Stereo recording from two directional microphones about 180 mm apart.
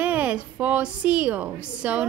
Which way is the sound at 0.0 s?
10° right (ahead or behind).